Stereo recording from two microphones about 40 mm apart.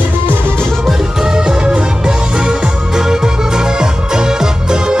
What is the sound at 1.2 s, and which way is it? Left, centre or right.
Music, centre.